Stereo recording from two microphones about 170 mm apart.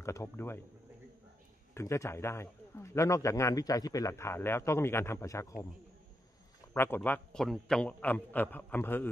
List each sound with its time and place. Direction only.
0.0 s a man's voice: 15° left (ahead or behind)
1.7 s a man's voice: 15° left (ahead or behind)
6.7 s a man's voice: 15° left (ahead or behind)